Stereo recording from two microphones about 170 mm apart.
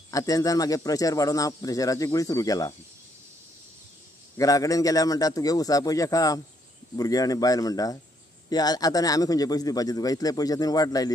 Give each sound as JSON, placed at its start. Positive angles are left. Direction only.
{"t": 0.1, "sound": "a man's voice", "side_deg": 20}
{"t": 4.4, "sound": "a man's voice", "side_deg": 20}